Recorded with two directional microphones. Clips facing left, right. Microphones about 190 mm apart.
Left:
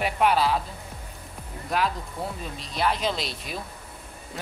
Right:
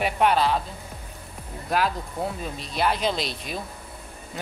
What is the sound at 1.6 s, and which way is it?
Speech, centre (ahead or behind).